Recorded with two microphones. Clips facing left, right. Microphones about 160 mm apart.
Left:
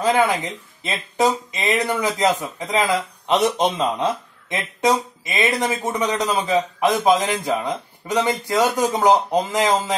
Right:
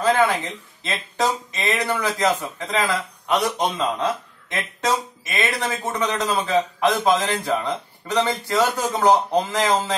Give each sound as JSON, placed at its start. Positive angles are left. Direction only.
{"t": 0.0, "sound": "speech", "side_deg": 15}
{"t": 3.3, "sound": "speech", "side_deg": 25}